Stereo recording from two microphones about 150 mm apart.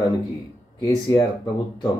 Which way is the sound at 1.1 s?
30° left (ahead or behind).